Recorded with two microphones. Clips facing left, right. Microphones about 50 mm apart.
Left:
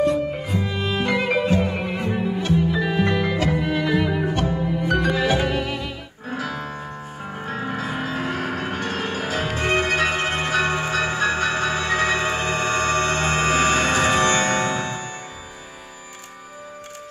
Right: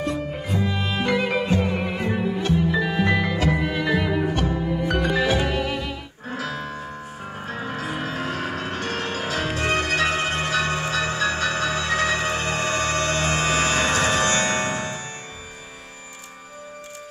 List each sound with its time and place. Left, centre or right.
0.0 s music: centre